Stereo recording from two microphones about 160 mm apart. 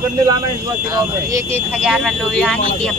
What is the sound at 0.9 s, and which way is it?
Speech, 20° right (ahead or behind).